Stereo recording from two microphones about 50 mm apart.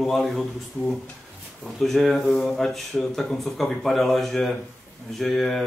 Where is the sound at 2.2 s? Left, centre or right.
Centre.